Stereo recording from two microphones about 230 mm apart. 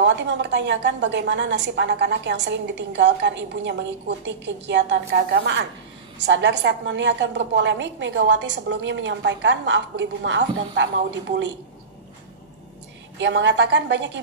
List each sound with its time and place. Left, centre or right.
0.0 s a woman's voice: right
13.2 s a woman's voice: right